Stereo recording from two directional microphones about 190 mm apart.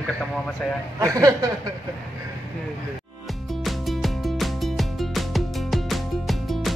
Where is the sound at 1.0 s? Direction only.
15° right (ahead or behind).